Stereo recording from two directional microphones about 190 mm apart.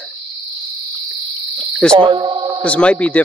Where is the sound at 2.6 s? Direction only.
5° left (ahead or behind).